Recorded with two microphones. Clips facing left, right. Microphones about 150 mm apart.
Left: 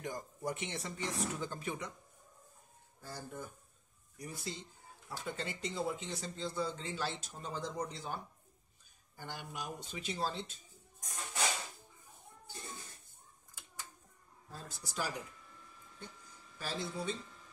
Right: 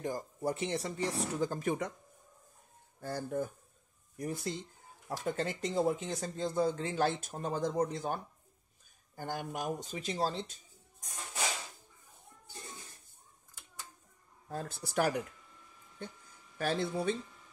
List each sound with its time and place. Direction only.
0.0 s speech: 30° right (ahead or behind)
3.0 s speech: 55° right (ahead or behind); by 10.5 s 40° right (ahead or behind)
14.5 s speech: 55° right (ahead or behind)
16.5 s speech: 60° right (ahead or behind)